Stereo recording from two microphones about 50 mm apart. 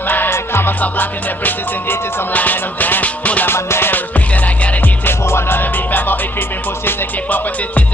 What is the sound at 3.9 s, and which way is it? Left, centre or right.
Music, left.